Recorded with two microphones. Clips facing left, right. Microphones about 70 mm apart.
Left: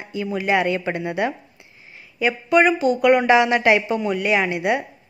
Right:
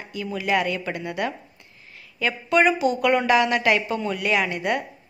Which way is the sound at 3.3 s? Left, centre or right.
Left.